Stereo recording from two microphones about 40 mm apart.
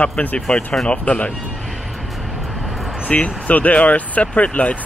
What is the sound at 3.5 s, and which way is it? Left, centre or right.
Speech, left.